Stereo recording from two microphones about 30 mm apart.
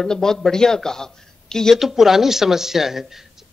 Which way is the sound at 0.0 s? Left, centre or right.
Centre.